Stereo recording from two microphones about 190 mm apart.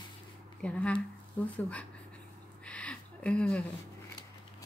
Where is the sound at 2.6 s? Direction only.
5° left (ahead or behind).